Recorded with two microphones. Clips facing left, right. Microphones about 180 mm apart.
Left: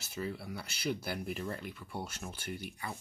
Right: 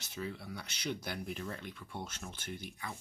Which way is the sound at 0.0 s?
5° left (ahead or behind).